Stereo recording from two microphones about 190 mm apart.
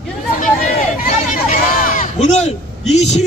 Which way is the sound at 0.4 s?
45° left (ahead or behind).